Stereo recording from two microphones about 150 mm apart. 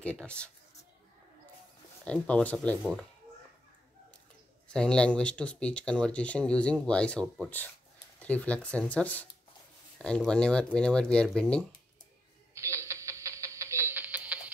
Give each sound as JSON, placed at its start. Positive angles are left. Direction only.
{"t": 0.0, "sound": "speech", "side_deg": 5}
{"t": 2.2, "sound": "speech", "side_deg": 10}
{"t": 2.8, "sound": "speech", "side_deg": -5}
{"t": 4.7, "sound": "speech", "side_deg": 5}
{"t": 12.5, "sound": "a sound", "side_deg": -20}